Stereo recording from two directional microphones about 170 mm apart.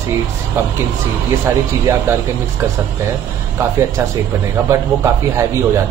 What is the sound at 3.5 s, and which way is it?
A man's voice, 20° right (ahead or behind).